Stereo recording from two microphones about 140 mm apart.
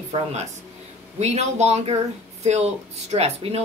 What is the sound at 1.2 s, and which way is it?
Speech, 55° right (ahead or behind).